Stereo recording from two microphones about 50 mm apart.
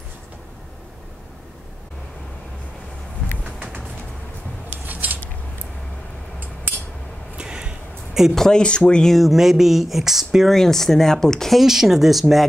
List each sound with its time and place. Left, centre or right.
3.4 s a sound: right
4.8 s cutlery: right
7.3 s a sound: centre
8.4 s speech: centre
9.1 s speech: centre
10.5 s speech: centre
11.5 s speech: centre